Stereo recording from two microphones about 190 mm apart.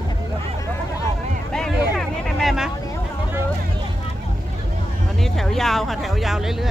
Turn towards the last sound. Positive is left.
turn(degrees=0)  # may be behind; listen again after turning